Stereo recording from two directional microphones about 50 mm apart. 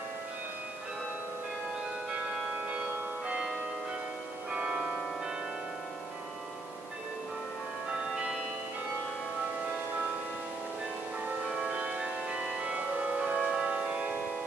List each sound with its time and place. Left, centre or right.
3.3 s change ringing: right
4.5 s music: centre
11.6 s music: right